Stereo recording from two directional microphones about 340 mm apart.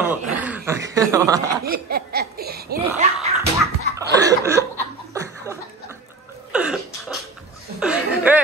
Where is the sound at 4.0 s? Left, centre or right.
Centre.